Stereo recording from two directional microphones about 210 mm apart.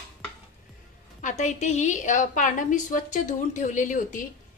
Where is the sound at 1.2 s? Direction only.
35° left (ahead or behind).